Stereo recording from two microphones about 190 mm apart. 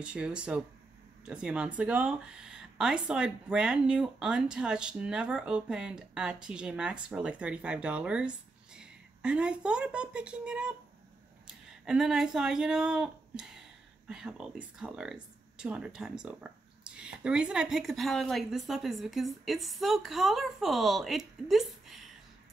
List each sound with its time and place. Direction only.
0.0 s speech: 5° right (ahead or behind)